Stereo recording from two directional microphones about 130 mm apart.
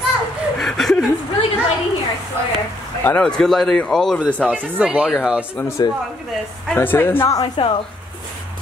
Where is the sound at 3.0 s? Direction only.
5° left (ahead or behind).